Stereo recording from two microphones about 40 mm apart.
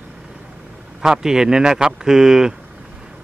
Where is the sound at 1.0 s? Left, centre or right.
Centre.